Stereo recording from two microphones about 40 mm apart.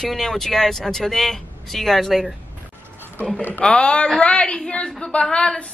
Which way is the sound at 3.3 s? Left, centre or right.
Left.